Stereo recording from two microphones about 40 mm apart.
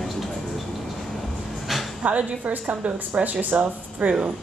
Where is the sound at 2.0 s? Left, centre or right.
Right.